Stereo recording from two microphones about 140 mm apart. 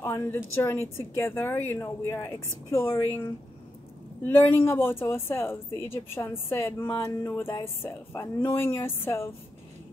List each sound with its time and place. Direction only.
0.0 s a woman's voice: 20° left (ahead or behind)
4.2 s a woman's voice: 15° left (ahead or behind)